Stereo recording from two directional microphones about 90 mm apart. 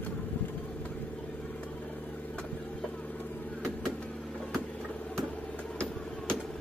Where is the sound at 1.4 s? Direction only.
15° left (ahead or behind).